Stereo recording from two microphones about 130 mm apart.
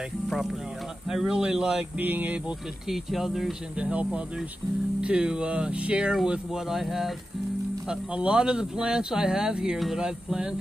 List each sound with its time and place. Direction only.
1.0 s speech: 5° right (ahead or behind)
2.9 s speech: centre (ahead or behind)